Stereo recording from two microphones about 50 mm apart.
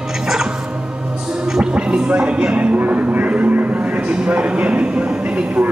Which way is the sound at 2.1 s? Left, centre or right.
Right.